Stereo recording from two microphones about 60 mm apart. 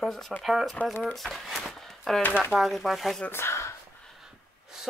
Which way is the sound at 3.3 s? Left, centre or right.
Left.